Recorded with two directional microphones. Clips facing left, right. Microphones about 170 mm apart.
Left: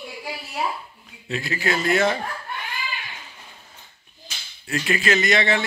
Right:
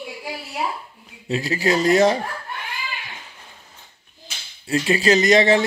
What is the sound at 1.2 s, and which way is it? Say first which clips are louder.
Speech: right 5 dB; 35° right (ahead or behind).